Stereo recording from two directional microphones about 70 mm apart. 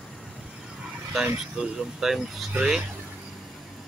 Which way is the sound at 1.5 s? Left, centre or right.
Centre.